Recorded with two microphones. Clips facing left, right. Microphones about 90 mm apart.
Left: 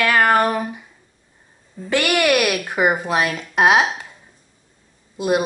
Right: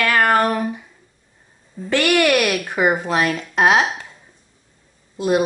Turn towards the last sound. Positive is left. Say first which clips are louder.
# right 1 dB
turn(degrees=10)  # may be behind; listen again after turning